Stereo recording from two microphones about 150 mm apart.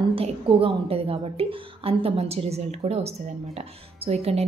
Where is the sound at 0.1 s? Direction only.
40° right (ahead or behind).